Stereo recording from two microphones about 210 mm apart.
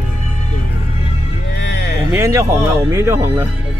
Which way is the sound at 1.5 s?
50° left (ahead or behind).